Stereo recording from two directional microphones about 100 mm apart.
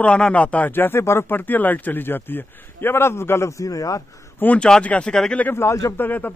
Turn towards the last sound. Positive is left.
turn(degrees=20)  # may be behind; listen again after turning